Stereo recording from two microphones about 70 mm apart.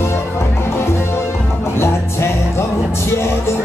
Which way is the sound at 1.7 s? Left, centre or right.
Left.